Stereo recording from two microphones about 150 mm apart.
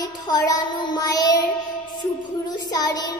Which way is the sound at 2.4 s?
25° left (ahead or behind).